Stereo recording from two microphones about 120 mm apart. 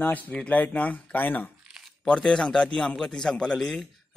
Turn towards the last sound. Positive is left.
turn(degrees=5)  # may be behind; listen again after turning